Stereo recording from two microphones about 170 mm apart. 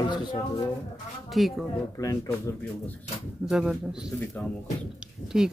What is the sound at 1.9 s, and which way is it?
Speech, 20° left (ahead or behind).